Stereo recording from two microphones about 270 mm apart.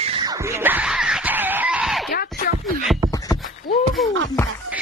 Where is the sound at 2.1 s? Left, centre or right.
Left.